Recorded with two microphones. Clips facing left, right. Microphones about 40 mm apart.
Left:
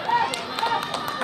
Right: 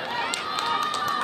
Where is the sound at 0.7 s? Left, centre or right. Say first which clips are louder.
Even; centre.